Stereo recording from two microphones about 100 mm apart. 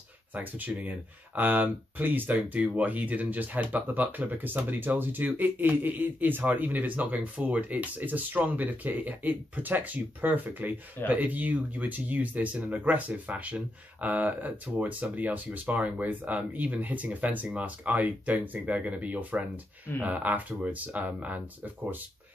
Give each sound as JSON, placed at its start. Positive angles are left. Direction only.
{"t": 0.3, "sound": "speech", "side_deg": -15}